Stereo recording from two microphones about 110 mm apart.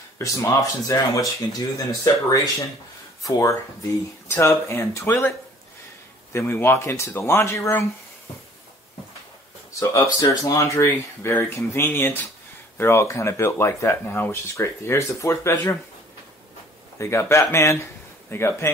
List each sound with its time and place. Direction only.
0.2 s speech: 30° left (ahead or behind)
6.3 s speech: 20° left (ahead or behind)
10.2 s speech: 30° left (ahead or behind)
17.0 s speech: 25° left (ahead or behind)